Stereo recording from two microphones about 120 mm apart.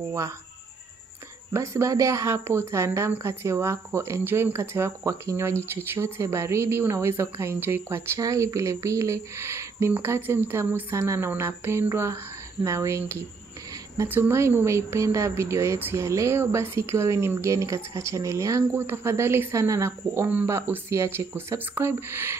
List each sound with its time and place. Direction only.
1.5 s speech: 25° right (ahead or behind)